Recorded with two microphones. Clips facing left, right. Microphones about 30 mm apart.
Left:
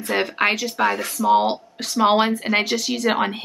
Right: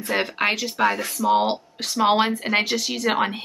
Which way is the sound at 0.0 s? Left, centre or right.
Centre.